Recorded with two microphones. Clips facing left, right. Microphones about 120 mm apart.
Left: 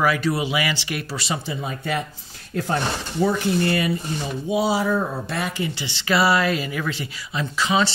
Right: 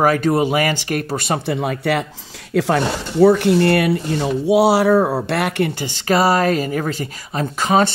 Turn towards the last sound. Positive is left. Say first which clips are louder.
# right 5 dB
turn(degrees=-50)  # may be behind; listen again after turning